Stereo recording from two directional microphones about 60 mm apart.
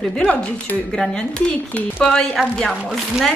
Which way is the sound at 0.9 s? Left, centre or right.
Centre.